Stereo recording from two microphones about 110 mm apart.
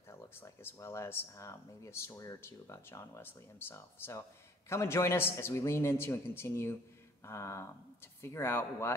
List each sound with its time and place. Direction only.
0.1 s speech: 25° left (ahead or behind)